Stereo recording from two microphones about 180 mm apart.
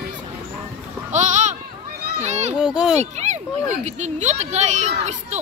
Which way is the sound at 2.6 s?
5° right (ahead or behind).